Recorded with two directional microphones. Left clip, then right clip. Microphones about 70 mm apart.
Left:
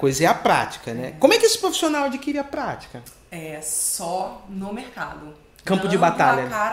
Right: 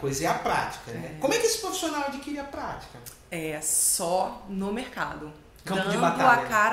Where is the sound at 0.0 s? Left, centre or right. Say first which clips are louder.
Left 9 dB; left.